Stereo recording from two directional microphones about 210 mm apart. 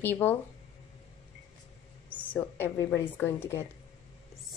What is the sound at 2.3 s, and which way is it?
Speech, 10° left (ahead or behind).